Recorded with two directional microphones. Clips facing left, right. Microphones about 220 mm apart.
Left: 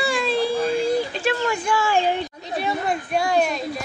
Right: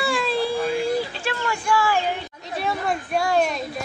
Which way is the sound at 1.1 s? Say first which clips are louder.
Left 5 dB; 20° left (ahead or behind).